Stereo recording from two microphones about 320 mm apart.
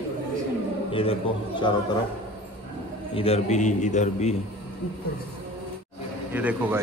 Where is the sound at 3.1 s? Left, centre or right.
Centre.